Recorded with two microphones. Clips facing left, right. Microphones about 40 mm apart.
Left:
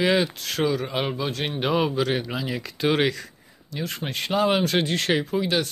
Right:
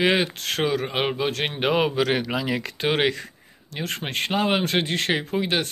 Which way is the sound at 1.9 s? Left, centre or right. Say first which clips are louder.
Right 2 dB; right.